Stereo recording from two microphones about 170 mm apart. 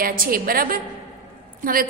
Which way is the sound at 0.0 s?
55° right (ahead or behind).